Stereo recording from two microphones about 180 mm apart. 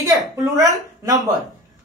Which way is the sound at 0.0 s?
20° right (ahead or behind).